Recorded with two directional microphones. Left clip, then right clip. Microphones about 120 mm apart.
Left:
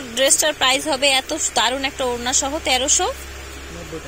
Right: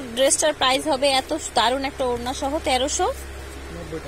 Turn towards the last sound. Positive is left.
turn(degrees=-25)  # may be behind; listen again after turning